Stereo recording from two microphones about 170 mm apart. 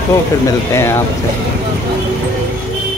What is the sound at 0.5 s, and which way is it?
Speech, 15° left (ahead or behind).